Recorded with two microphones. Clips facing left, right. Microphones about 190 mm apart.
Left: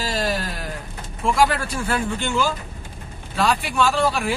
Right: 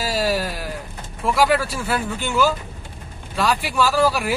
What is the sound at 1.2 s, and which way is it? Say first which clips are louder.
Speech: right 1 dB; 5° right (ahead or behind).